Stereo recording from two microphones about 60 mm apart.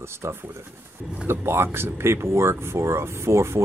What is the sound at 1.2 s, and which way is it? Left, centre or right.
Speech, right.